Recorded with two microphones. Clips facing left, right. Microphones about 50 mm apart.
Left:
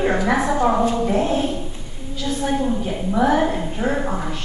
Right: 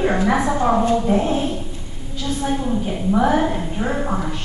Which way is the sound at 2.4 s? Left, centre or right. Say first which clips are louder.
Left 1 dB; centre.